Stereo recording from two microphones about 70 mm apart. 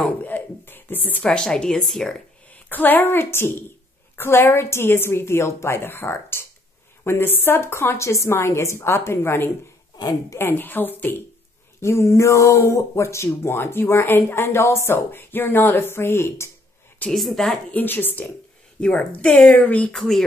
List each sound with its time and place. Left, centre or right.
0.2 s a sound: left
1.2 s speech: centre
2.5 s a woman's voice: left
11.8 s speech: left
17.1 s a woman's voice: centre
17.5 s speech: centre
17.8 s a woman's voice: left
18.8 s speech: centre
20.0 s a woman's voice: centre